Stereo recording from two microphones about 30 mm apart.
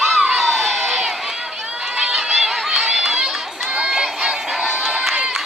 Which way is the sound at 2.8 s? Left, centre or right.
Centre.